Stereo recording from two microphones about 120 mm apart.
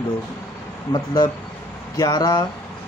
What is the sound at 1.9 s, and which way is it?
Speech, 35° left (ahead or behind).